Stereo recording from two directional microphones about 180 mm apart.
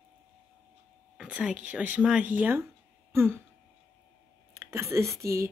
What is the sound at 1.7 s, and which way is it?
Speech, 10° right (ahead or behind).